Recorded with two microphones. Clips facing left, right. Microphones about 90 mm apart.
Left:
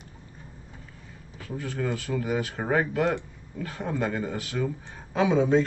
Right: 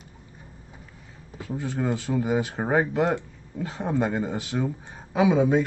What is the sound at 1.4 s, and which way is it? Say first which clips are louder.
Speech: right 3 dB; 20° right (ahead or behind).